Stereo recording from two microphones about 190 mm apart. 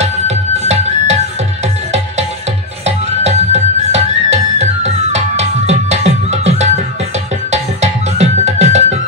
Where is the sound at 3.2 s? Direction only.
35° right (ahead or behind).